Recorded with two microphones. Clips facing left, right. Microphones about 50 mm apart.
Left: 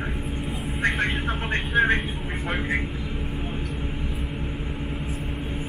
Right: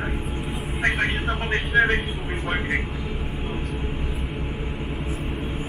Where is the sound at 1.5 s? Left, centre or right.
Right.